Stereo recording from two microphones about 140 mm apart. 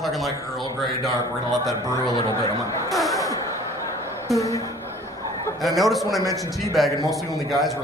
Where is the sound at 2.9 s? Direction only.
Centre (ahead or behind).